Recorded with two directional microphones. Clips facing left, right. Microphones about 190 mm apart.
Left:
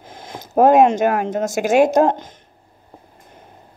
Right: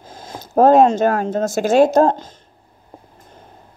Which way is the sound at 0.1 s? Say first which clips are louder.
Right 1 dB; 20° left (ahead or behind).